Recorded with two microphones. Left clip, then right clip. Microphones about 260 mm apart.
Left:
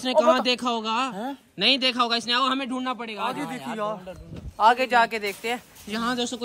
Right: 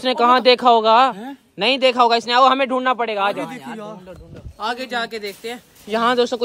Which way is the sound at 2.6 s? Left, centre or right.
Right.